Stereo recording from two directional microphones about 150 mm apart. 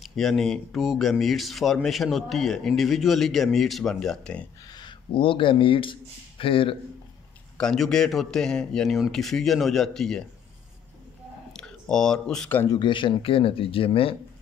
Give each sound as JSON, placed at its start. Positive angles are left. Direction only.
{"t": 0.0, "sound": "speech", "side_deg": 0}
{"t": 4.7, "sound": "speech", "side_deg": 35}
{"t": 7.5, "sound": "speech", "side_deg": 5}
{"t": 11.5, "sound": "speech", "side_deg": 5}
{"t": 12.6, "sound": "speech", "side_deg": 30}